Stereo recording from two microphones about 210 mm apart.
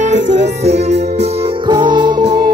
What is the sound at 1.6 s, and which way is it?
Music, 20° right (ahead or behind).